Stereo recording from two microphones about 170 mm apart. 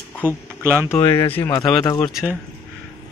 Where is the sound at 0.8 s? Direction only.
20° left (ahead or behind).